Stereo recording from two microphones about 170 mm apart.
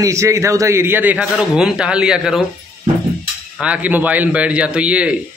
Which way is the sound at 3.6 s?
10° right (ahead or behind).